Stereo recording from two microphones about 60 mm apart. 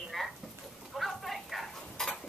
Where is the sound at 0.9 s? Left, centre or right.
Centre.